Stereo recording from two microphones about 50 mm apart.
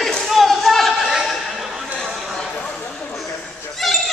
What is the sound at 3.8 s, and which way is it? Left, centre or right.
Goat, centre.